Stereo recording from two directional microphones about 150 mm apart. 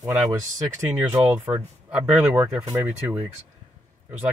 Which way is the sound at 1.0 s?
10° right (ahead or behind).